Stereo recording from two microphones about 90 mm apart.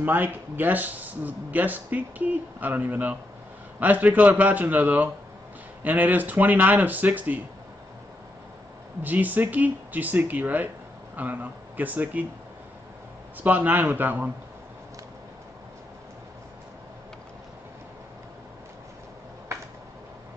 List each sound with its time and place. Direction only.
0.0 s speech: 20° right (ahead or behind)
9.0 s speech: 20° right (ahead or behind)
13.4 s speech: 20° right (ahead or behind)